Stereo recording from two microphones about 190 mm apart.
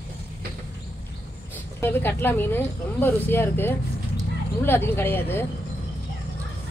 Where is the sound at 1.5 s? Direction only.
10° left (ahead or behind).